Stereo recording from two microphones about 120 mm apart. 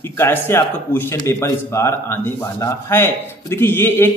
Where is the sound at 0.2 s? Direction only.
20° left (ahead or behind).